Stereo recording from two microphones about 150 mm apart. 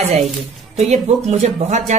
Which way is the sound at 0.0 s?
50° right (ahead or behind).